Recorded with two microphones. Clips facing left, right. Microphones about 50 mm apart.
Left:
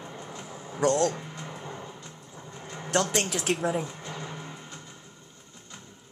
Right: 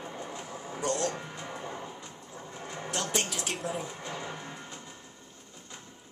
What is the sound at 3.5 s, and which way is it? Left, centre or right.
Speech, centre.